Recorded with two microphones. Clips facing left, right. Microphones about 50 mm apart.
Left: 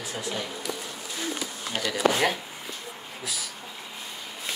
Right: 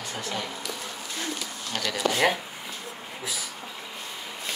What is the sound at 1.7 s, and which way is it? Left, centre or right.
Speech, centre.